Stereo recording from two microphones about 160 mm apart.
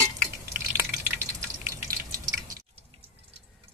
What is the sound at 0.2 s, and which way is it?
Drip, 15° right (ahead or behind).